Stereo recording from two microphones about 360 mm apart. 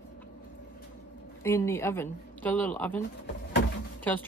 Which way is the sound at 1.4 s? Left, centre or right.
Centre.